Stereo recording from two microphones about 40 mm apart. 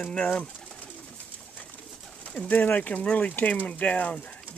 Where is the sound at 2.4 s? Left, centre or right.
Left.